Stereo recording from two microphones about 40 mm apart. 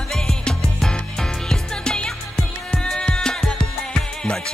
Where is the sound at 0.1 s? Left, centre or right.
Centre.